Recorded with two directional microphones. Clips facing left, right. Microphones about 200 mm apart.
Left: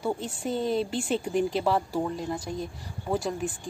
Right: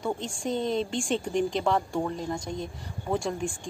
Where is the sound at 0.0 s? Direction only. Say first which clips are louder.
Left 1 dB; 5° left (ahead or behind).